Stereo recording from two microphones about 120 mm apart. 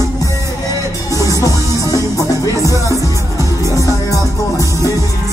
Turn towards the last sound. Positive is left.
turn(degrees=25)  # may be behind; listen again after turning